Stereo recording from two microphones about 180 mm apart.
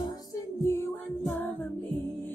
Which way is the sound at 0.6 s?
15° left (ahead or behind).